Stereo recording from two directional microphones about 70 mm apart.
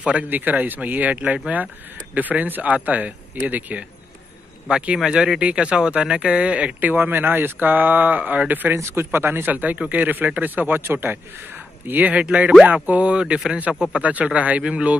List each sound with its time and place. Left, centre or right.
0.0 s speech: centre
4.6 s speech: centre
8.7 s speech: right; by 15.0 s centre